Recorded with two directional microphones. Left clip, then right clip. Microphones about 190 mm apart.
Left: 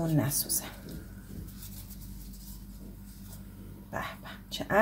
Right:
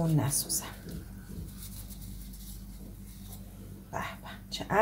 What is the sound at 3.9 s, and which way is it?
Dog, 30° left (ahead or behind).